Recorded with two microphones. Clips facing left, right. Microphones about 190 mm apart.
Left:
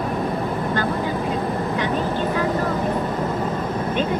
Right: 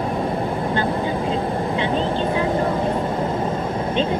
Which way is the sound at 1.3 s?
25° right (ahead or behind).